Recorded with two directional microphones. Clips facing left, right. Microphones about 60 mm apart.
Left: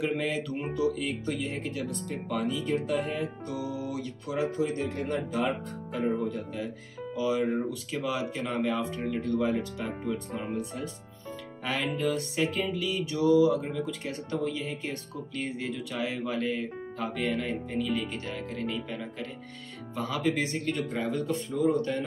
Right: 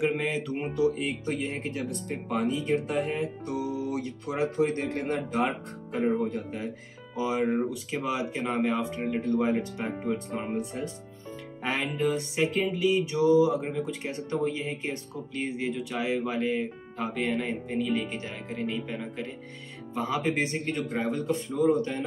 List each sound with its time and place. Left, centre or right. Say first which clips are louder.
0.0 s speech: right 2 dB; right
3.6 s music: right 2 dB; left
3.9 s speech: right 1 dB; right
4.6 s speech: right 3 dB; right
7.2 s speech: right 1 dB; right